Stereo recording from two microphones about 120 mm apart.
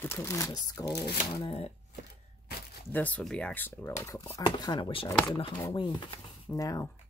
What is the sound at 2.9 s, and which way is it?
Speech, 10° left (ahead or behind).